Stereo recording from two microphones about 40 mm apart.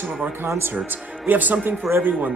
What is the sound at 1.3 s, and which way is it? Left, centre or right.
Speech, right.